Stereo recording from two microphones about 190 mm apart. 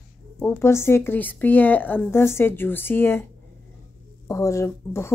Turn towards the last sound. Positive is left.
turn(degrees=15)  # may be behind; listen again after turning